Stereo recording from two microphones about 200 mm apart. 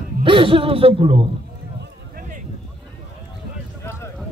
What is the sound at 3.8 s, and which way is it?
Clip-clop, 15° left (ahead or behind).